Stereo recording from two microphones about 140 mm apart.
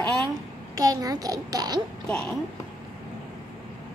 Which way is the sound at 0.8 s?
25° right (ahead or behind).